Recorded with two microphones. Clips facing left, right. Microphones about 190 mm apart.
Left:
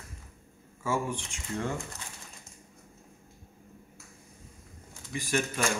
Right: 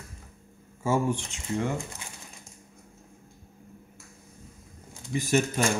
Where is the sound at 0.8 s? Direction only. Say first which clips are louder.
Right 5 dB; 25° right (ahead or behind).